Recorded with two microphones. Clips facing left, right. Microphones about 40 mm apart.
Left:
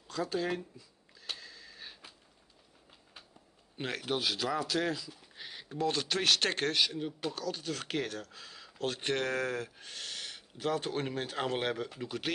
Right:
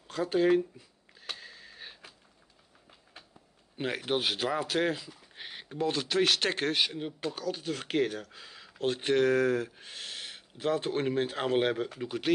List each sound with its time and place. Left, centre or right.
0.1 s speech: right
1.4 s a sound: right
3.7 s a man's voice: centre
4.0 s speech: right
5.9 s speech: centre
6.7 s speech: right
9.0 s speech: centre